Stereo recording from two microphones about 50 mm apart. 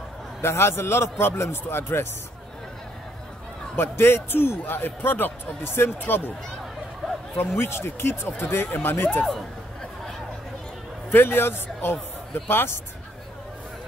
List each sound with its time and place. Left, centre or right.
0.4 s a man's voice: left
3.7 s a man's voice: left
7.3 s a man's voice: left
11.1 s a man's voice: left